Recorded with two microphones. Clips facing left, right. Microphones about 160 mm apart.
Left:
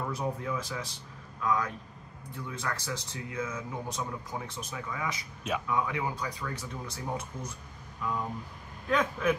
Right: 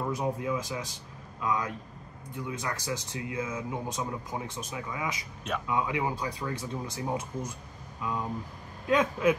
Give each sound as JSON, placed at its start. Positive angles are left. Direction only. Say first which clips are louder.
{"t": 0.0, "sound": "speech", "louder": "right 3 dB", "side_deg": -15}
{"t": 8.8, "sound": "speech", "louder": "right 3 dB", "side_deg": -20}